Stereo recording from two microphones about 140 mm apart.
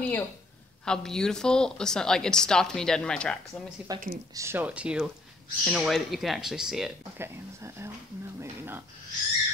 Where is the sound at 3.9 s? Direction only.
25° right (ahead or behind).